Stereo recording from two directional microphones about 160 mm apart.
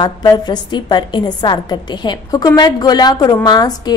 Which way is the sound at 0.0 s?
25° left (ahead or behind).